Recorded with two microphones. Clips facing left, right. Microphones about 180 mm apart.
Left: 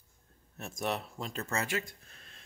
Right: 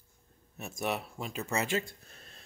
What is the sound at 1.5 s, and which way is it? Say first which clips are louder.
Speech: right 3 dB; 25° right (ahead or behind).